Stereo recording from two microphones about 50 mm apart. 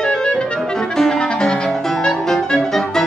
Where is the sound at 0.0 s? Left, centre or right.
Centre.